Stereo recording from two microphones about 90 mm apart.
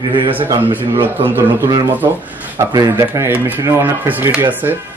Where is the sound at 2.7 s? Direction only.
35° right (ahead or behind).